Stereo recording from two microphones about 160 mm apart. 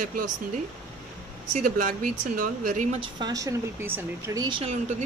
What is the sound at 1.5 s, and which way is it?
Speech, 55° right (ahead or behind).